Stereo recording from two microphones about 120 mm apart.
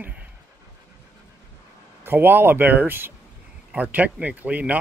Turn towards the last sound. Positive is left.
turn(degrees=-10)  # may be behind; listen again after turning